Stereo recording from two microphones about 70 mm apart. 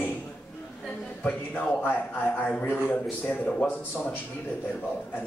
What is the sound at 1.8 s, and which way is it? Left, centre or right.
Speech, left.